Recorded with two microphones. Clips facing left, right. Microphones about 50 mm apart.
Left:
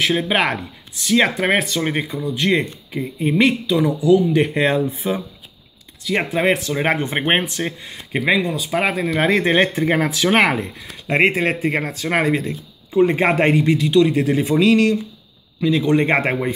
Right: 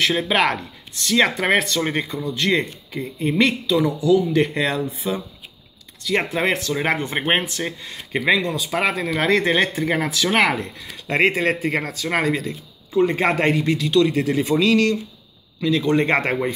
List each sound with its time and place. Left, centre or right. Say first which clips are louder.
0.3 s speech: even; centre
4.6 s speech: left 4 dB; left
6.0 s speech: left 2 dB; centre
6.9 s speech: left 2 dB; left
7.6 s speech: left 2 dB; centre
11.1 s speech: left 2 dB; centre
11.9 s speech: left 2 dB; left